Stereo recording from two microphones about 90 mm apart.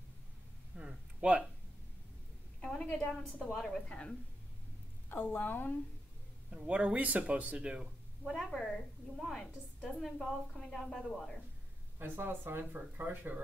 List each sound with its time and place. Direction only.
0.7 s a sound: 10° right (ahead or behind)
2.6 s a woman's voice: 5° left (ahead or behind)
5.1 s a woman's voice: 20° left (ahead or behind)
6.5 s speech: 10° right (ahead or behind)
8.3 s a woman's voice: 5° left (ahead or behind)
12.0 s speech: 25° right (ahead or behind)